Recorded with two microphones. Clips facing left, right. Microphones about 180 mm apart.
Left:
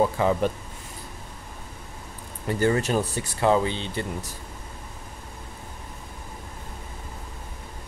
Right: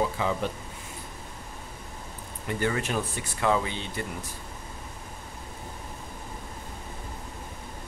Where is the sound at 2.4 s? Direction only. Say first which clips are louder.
Left 6 dB; 35° left (ahead or behind).